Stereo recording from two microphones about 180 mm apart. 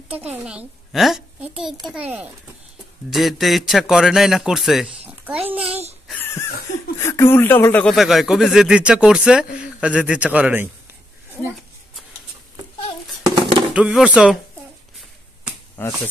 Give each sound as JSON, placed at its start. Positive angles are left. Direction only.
{"t": 0.1, "sound": "speech", "side_deg": -5}
{"t": 3.1, "sound": "speech", "side_deg": 0}
{"t": 5.7, "sound": "a child's voice", "side_deg": -35}
{"t": 6.1, "sound": "a sound", "side_deg": 10}
{"t": 7.0, "sound": "speech", "side_deg": 15}
{"t": 13.3, "sound": "dishes", "side_deg": -25}
{"t": 13.7, "sound": "speech", "side_deg": -5}
{"t": 15.8, "sound": "speech", "side_deg": 10}